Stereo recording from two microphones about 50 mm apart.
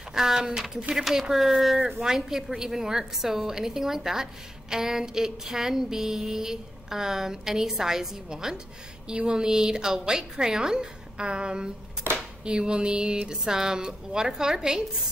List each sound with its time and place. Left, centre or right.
0.1 s a woman's voice: centre